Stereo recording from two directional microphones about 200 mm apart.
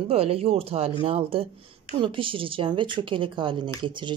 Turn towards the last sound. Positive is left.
turn(degrees=-25)  # may be behind; listen again after turning